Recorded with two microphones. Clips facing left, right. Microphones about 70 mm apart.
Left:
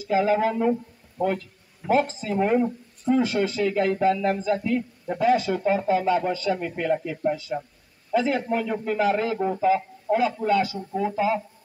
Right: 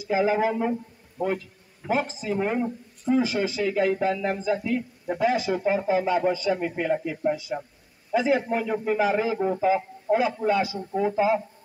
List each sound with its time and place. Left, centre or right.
0.0 s speech: centre
1.9 s speech: centre